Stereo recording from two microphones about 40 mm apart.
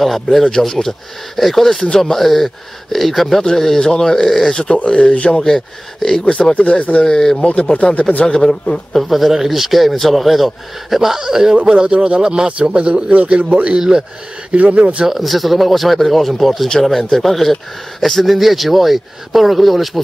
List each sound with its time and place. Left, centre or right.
0.0 s speech: centre
0.5 s speech: centre
4.8 s speech: left
5.3 s speech: centre
6.5 s speech: left
7.1 s speech: centre
7.7 s speech: left
8.3 s speech: centre
8.9 s speech: centre
14.5 s speech: right
14.8 s speech: right
15.0 s speech: centre